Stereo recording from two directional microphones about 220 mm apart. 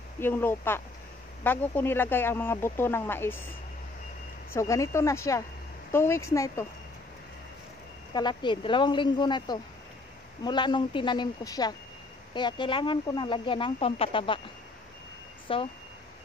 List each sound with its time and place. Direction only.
0.2 s speech: 10° left (ahead or behind)
4.5 s speech: 15° left (ahead or behind)
8.1 s speech: 20° left (ahead or behind)
15.4 s speech: 25° left (ahead or behind)